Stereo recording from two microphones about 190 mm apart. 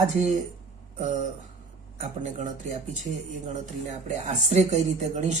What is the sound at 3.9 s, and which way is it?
Speech, 40° right (ahead or behind).